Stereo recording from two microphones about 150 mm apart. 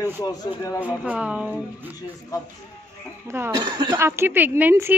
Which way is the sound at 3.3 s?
15° right (ahead or behind).